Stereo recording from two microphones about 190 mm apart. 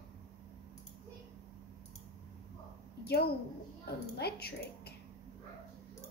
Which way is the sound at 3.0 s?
55° left (ahead or behind).